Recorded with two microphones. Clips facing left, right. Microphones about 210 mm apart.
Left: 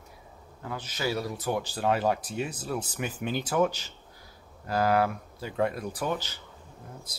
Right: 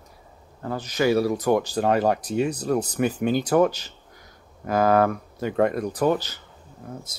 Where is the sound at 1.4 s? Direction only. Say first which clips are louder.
Right 8 dB; 45° right (ahead or behind).